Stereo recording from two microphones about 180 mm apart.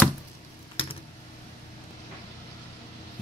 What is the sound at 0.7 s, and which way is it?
Typing, 30° left (ahead or behind).